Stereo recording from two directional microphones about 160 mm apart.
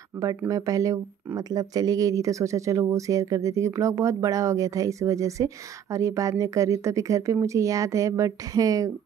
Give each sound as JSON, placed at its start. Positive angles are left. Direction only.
{"t": 0.4, "sound": "speech", "side_deg": -20}